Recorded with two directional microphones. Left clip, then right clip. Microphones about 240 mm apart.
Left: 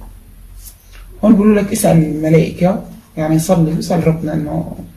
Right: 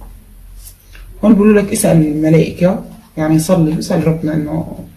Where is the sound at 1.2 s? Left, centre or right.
Centre.